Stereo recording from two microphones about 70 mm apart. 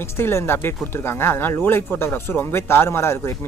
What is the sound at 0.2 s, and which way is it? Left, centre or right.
Speech, left.